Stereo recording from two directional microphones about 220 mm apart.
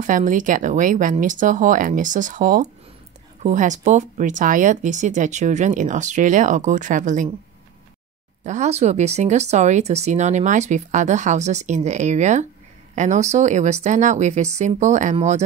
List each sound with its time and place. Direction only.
0.0 s speech: 35° right (ahead or behind)
8.5 s speech: 30° right (ahead or behind)